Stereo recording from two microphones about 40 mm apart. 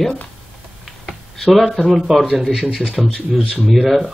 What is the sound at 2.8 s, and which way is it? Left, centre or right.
Speech, left.